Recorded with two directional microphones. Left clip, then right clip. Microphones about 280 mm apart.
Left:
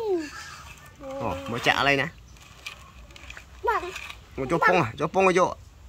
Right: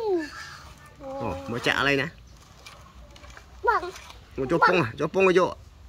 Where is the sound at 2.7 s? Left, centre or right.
Centre.